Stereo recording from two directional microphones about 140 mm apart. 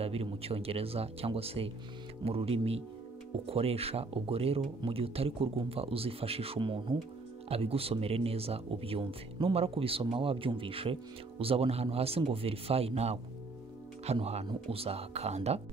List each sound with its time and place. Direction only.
0.0 s speech: 45° right (ahead or behind)